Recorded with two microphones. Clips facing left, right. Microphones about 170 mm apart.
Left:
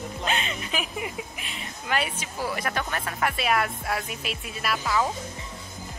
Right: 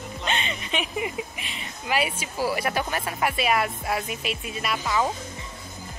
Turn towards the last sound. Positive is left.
turn(degrees=0)  # may be behind; listen again after turning